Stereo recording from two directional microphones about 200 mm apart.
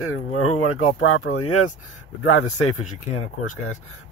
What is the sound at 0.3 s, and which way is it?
Speech, 90° left.